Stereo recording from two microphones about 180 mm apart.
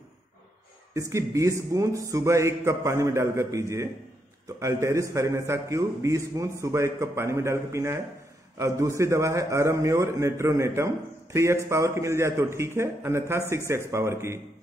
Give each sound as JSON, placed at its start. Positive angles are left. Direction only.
{"t": 0.9, "sound": "a man's voice", "side_deg": -15}